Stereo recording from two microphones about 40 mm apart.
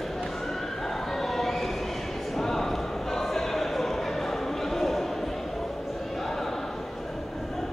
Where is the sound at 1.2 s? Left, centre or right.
Centre.